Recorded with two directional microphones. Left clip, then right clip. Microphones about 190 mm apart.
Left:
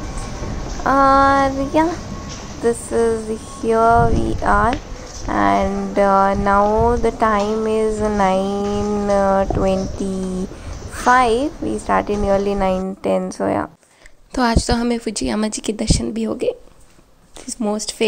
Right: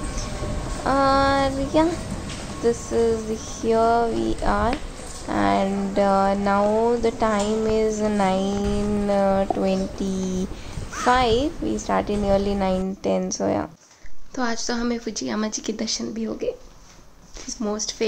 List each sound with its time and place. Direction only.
0.8 s speech: 15° left (ahead or behind)
11.1 s speech: 15° left (ahead or behind)
14.3 s a woman's voice: 45° left (ahead or behind)
17.6 s a woman's voice: 35° left (ahead or behind)